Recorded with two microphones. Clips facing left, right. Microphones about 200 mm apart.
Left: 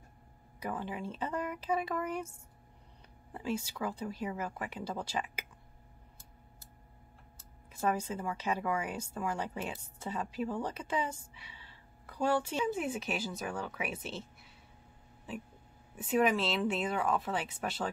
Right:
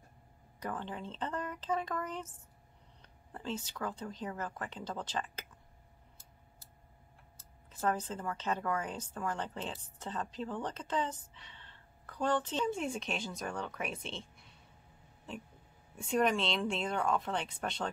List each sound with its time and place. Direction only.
0.6 s a woman's voice: 10° left (ahead or behind)
7.7 s a woman's voice: 10° left (ahead or behind)